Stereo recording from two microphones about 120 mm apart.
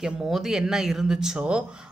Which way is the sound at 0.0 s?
5° right (ahead or behind).